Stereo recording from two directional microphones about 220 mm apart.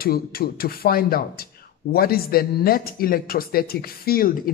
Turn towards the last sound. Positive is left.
turn(degrees=40)  # may be behind; listen again after turning